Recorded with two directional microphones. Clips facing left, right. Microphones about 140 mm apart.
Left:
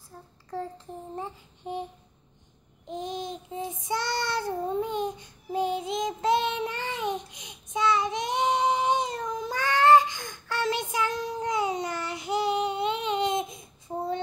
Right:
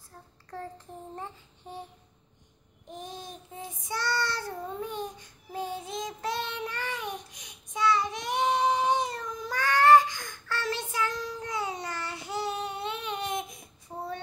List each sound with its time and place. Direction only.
1.1 s child singing: 15° left (ahead or behind)
2.9 s child singing: 20° left (ahead or behind)